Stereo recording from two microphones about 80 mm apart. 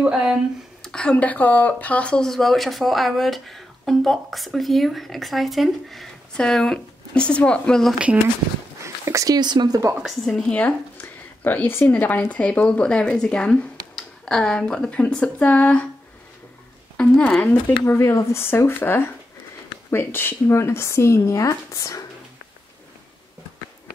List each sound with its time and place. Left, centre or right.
0.0 s speech: centre
0.8 s speech: centre
8.8 s a sound: right
9.4 s speech: right
10.2 s speech: centre
10.6 s speech: left
16.9 s speech: centre
17.8 s speech: left